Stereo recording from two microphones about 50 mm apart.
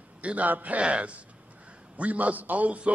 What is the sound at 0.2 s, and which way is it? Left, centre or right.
A man's voice, right.